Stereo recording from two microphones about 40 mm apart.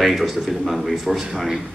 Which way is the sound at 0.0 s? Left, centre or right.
Centre.